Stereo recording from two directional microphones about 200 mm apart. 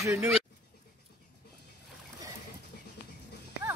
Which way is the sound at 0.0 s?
15° right (ahead or behind).